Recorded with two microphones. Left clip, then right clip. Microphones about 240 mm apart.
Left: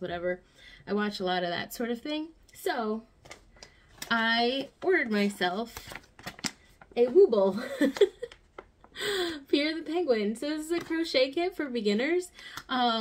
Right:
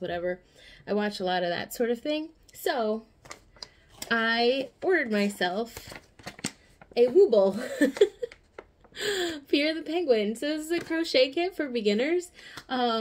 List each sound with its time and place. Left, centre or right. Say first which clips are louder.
0.0 s speech: right 1 dB; centre
6.9 s a woman's voice: right 1 dB; centre
7.2 s speech: right 3 dB; centre
7.5 s speech: right 2 dB; centre
9.1 s speech: right 1 dB; centre
9.8 s a woman's voice: right 3 dB; left
10.3 s speech: right 2 dB; centre